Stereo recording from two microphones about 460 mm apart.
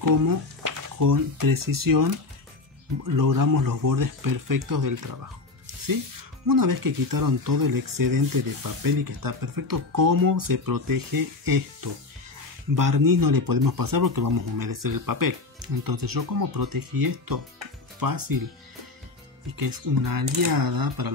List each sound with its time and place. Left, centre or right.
0.0 s speech: right
6.4 s speech: right
19.5 s speech: right